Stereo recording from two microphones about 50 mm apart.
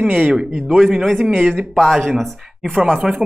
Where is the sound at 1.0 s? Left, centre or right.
Centre.